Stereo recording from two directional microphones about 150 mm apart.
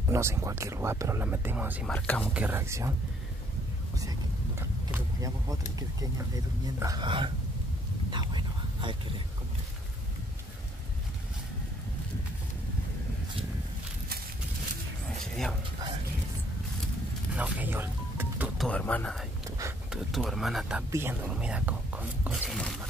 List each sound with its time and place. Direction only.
0.1 s speech: 20° right (ahead or behind)
1.9 s speech: 10° left (ahead or behind)
2.3 s speech: 10° right (ahead or behind)
3.9 s a sound: 25° right (ahead or behind)
5.8 s speech: 25° right (ahead or behind)
8.1 s whispering: 30° right (ahead or behind)
17.3 s music: 10° right (ahead or behind)
18.6 s speech: 10° left (ahead or behind)
20.9 s speech: 15° right (ahead or behind)
22.3 s a sound: centre (ahead or behind)